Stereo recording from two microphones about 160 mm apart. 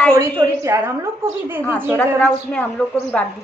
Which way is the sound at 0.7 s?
20° right (ahead or behind).